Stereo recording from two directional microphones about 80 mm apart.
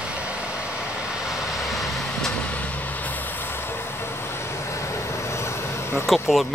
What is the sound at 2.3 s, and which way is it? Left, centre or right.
Vehicle, centre.